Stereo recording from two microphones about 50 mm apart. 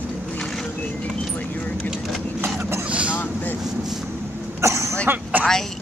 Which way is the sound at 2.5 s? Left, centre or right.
Right.